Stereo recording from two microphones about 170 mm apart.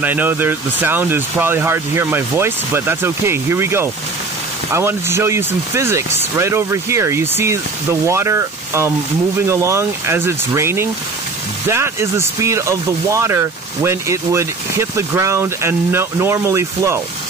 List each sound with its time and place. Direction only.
0.0 s speech: 10° right (ahead or behind)